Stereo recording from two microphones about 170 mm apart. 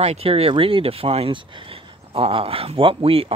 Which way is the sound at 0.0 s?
35° right (ahead or behind).